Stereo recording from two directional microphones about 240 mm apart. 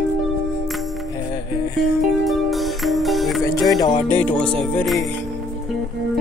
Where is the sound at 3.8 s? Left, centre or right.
Centre.